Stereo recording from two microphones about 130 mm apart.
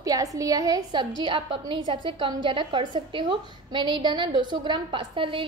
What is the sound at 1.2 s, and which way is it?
A woman's voice, 40° right (ahead or behind).